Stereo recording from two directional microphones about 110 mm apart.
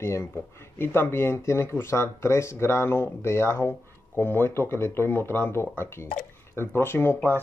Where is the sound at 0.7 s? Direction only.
20° left (ahead or behind).